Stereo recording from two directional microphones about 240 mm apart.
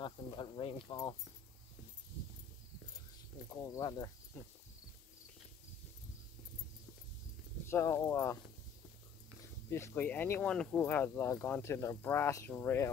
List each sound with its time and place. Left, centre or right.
0.0 s speech: centre
3.6 s speech: centre
7.7 s speech: centre
9.7 s speech: centre